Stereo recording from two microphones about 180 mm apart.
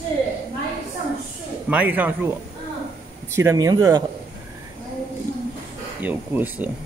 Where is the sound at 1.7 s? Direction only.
10° right (ahead or behind).